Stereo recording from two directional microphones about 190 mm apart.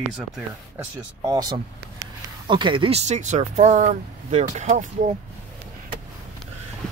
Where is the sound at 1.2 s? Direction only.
20° right (ahead or behind); by 4.9 s 40° right (ahead or behind).